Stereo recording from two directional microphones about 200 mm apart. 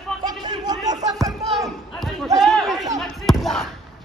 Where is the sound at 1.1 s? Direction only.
20° right (ahead or behind).